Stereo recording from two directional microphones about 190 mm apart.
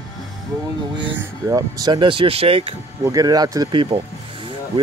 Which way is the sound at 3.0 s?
20° right (ahead or behind).